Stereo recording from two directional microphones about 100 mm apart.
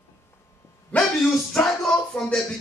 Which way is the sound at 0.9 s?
10° left (ahead or behind).